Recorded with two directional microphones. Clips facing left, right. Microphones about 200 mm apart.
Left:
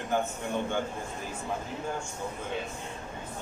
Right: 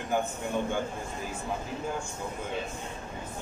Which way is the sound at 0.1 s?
10° right (ahead or behind).